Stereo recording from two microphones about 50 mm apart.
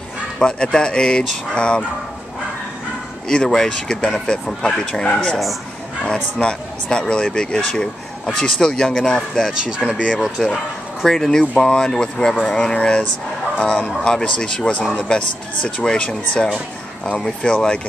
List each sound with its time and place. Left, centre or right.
0.4 s speech: centre
3.3 s speech: centre
6.4 s speech: centre
9.7 s speech: centre
10.0 s speech: centre